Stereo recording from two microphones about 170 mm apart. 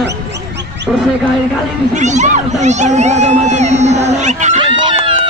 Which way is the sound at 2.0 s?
45° right (ahead or behind).